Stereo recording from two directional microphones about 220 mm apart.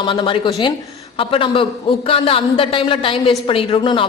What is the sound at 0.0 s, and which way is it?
A man's voice, 20° left (ahead or behind).